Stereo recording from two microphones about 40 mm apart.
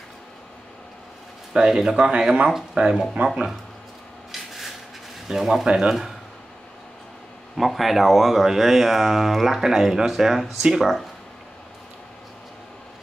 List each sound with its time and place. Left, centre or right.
1.5 s speech: centre
3.2 s speech: right
5.3 s speech: centre
7.5 s speech: centre